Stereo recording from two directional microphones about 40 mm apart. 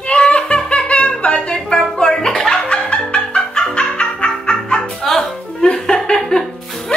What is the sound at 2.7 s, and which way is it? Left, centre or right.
Fowl, left.